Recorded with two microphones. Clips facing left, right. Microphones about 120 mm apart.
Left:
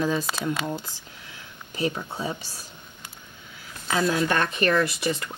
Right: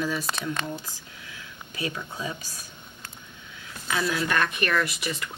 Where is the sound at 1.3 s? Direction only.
30° left (ahead or behind).